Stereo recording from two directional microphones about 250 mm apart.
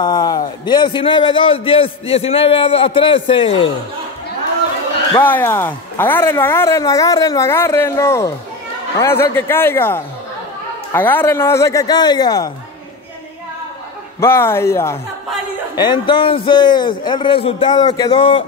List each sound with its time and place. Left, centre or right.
0.0 s a man's voice: centre
5.1 s speech: centre
14.2 s a man's voice: centre